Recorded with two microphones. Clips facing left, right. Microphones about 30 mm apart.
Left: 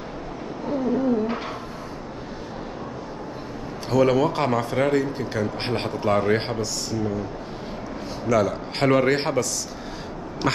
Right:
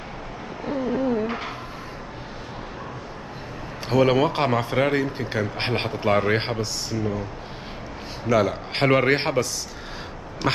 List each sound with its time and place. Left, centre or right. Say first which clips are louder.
0.7 s a sound: left 1 dB; right
3.9 s speech: even; right
8.3 s speech: right 1 dB; right
10.4 s quack: even; centre